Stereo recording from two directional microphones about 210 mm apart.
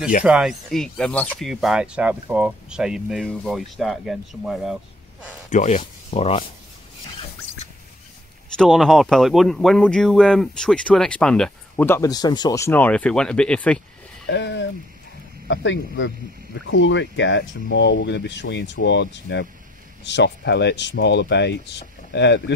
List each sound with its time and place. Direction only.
0.2 s speech: 5° right (ahead or behind)
5.5 s speech: 35° left (ahead or behind)
8.5 s speech: centre (ahead or behind)
14.3 s speech: 55° left (ahead or behind)